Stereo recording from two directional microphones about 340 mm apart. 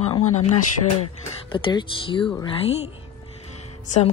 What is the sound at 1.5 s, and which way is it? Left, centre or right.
Speech, centre.